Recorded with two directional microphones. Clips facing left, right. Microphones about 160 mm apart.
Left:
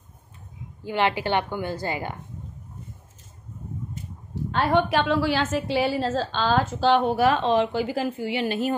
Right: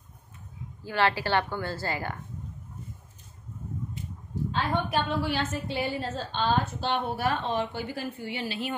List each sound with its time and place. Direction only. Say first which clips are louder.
0.8 s a woman's voice: left 3 dB; 20° left (ahead or behind)
4.5 s a woman's voice: left 8 dB; 70° left (ahead or behind); by 8.5 s 90° left
8.5 s a woman's voice: left 8 dB; 45° left (ahead or behind)